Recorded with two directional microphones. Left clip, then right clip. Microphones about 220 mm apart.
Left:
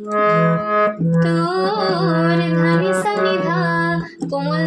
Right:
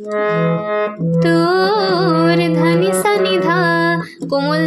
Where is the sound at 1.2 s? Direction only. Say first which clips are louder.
Right 7 dB; 50° right (ahead or behind).